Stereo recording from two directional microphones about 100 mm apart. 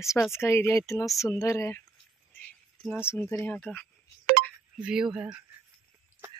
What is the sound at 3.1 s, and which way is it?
Speech, 25° left (ahead or behind).